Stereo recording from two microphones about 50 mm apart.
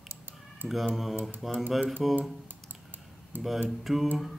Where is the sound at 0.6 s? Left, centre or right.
Centre.